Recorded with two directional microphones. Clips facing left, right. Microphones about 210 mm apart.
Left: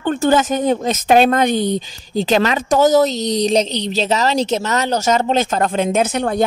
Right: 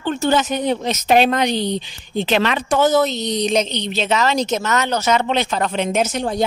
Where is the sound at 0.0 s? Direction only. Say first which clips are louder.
Left 3 dB; 50° left (ahead or behind).